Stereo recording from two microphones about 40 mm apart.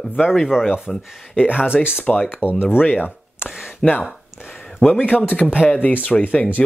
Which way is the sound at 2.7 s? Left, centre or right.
Left.